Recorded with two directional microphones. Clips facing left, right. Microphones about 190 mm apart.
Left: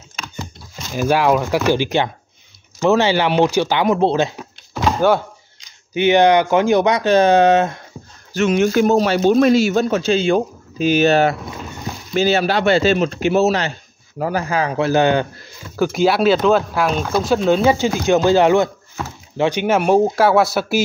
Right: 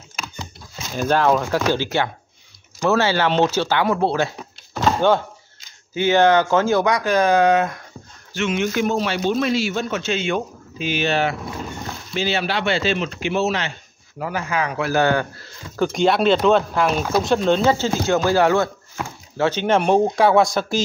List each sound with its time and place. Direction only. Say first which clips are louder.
0.1 s a sound: left 3 dB; 5° right (ahead or behind)
0.9 s speech: left 2 dB; 10° left (ahead or behind)
4.4 s door: left 2 dB; 5° left (ahead or behind)
5.9 s speech: left 3 dB; 20° left (ahead or behind)
8.3 s a man's voice: left 6 dB; 40° left (ahead or behind); by 15.5 s 20° left (ahead or behind)
15.7 s speech: left 2 dB; 5° left (ahead or behind)
17.6 s speech: left 3 dB; 15° left (ahead or behind)